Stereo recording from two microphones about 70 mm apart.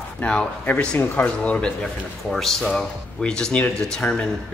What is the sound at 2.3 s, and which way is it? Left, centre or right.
Speech, centre.